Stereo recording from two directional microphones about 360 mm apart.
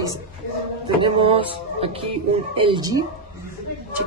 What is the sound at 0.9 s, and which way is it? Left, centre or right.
A man's voice, centre.